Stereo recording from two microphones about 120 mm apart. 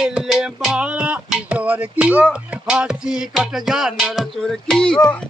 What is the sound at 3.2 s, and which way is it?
Music, 5° right (ahead or behind).